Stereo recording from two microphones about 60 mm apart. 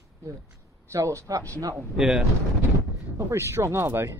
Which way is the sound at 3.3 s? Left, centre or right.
Right.